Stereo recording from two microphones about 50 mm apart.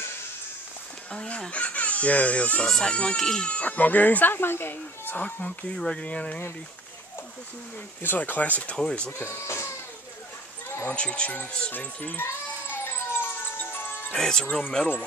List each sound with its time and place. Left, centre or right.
1.1 s speech: centre
2.6 s speech: centre
2.9 s speech: left
3.2 s speech: centre
3.4 s speech: left
5.2 s speech: left
8.2 s speech: left
9.3 s speech: left
10.9 s speech: left
12.8 s music: left
14.1 s speech: centre